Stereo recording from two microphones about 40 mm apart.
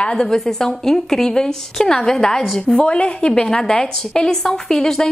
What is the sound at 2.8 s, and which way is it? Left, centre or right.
A woman's voice, left.